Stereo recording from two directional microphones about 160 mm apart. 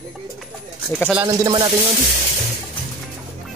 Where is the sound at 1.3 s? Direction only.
20° right (ahead or behind).